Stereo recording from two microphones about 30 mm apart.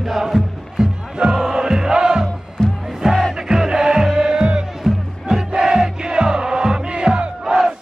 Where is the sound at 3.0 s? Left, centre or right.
Centre.